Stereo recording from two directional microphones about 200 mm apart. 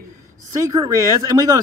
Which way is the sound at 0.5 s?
15° right (ahead or behind).